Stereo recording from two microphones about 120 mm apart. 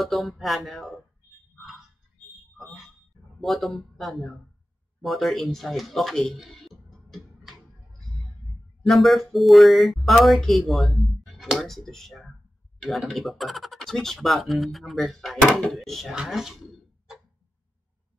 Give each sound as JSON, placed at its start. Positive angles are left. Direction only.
{"t": 0.0, "sound": "speech", "side_deg": 0}
{"t": 2.5, "sound": "fire alarm", "side_deg": 0}
{"t": 3.3, "sound": "speech", "side_deg": 0}
{"t": 8.8, "sound": "speech", "side_deg": 0}